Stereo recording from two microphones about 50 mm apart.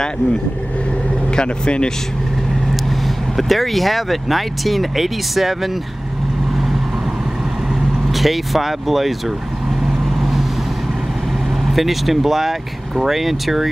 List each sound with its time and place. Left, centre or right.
1.3 s speech: centre
3.3 s speech: centre
8.1 s speech: centre
11.7 s speech: centre